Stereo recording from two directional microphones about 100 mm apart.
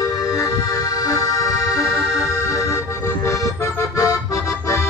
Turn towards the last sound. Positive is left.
turn(degrees=35)  # may be behind; listen again after turning